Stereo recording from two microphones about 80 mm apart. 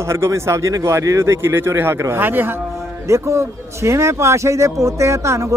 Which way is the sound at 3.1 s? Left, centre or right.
Right.